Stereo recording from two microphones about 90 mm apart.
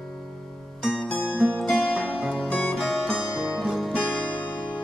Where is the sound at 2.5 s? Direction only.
15° left (ahead or behind).